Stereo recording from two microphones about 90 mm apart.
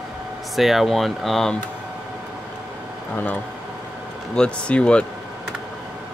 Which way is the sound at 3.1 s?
20° left (ahead or behind).